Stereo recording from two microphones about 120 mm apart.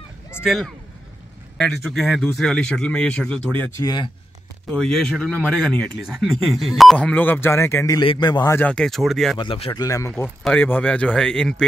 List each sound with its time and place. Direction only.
0.4 s speech: 5° right (ahead or behind)
3.8 s a man's voice: 35° left (ahead or behind)
4.6 s speech: 5° left (ahead or behind); by 8.0 s 25° left (ahead or behind)
8.0 s a man's voice: 40° left (ahead or behind)
8.5 s speech: 15° left (ahead or behind)
8.7 s speech: 5° left (ahead or behind)
9.4 s speech: 45° left (ahead or behind)
9.8 s speech: 30° left (ahead or behind)
10.4 s speech: 10° left (ahead or behind)